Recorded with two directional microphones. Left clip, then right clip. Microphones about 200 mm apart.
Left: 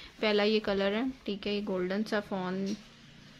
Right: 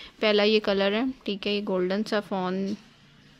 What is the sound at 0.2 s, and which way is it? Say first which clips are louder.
Speech: right 6 dB; 45° right (ahead or behind).